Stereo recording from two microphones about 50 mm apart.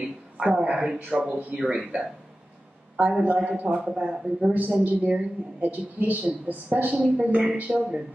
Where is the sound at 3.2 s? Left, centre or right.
Right.